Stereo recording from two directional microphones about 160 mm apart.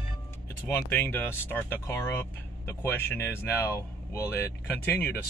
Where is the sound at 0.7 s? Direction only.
15° left (ahead or behind).